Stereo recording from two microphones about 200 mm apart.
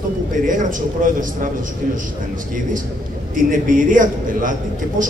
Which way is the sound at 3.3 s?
40° right (ahead or behind).